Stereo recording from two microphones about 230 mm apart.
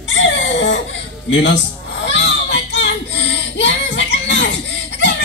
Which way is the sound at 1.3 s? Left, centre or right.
Left.